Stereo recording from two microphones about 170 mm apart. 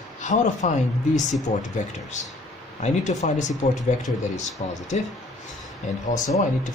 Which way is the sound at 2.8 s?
45° left (ahead or behind).